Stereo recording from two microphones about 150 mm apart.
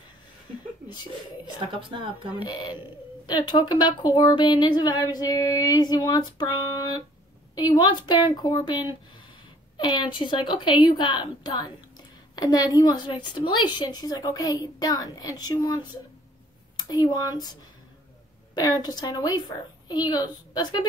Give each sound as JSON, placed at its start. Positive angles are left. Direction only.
{"t": 1.4, "sound": "speech", "side_deg": -35}
{"t": 2.3, "sound": "a woman's voice", "side_deg": 30}